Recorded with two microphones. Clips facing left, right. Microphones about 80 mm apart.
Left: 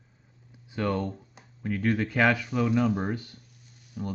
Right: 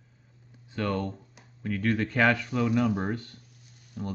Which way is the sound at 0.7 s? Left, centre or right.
Centre.